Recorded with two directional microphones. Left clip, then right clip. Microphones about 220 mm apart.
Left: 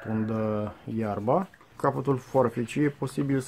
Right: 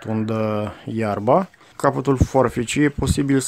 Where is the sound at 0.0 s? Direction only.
35° right (ahead or behind).